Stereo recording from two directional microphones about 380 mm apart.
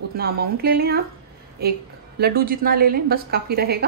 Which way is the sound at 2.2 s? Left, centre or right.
Right.